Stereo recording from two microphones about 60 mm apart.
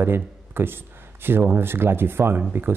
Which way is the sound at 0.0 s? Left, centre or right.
Right.